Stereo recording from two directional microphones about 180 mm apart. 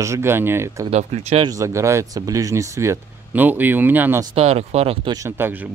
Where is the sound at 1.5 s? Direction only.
15° right (ahead or behind).